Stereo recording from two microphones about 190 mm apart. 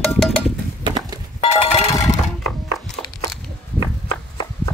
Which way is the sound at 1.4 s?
30° left (ahead or behind).